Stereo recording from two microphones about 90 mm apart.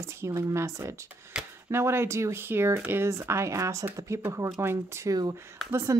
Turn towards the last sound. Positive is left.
turn(degrees=-30)  # may be behind; listen again after turning